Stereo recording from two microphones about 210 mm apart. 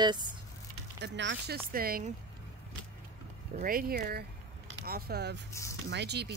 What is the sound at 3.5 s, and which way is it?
Speech, 40° right (ahead or behind).